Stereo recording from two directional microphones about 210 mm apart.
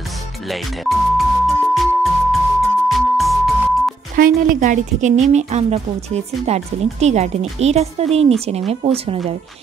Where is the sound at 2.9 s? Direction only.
Centre (ahead or behind).